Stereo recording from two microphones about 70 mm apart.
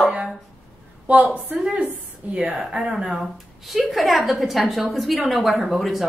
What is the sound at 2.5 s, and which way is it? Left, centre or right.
A woman's voice, centre.